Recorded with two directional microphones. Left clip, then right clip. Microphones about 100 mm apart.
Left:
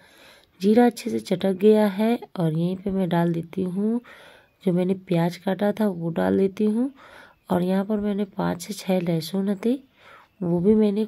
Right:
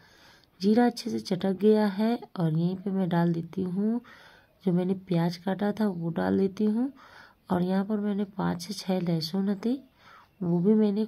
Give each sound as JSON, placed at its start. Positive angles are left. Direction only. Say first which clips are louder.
{"t": 0.6, "sound": "speech", "louder": "left 6 dB", "side_deg": 30}
{"t": 3.7, "sound": "speech", "louder": "left 4 dB", "side_deg": 15}
{"t": 4.6, "sound": "speech", "louder": "left 5 dB", "side_deg": 30}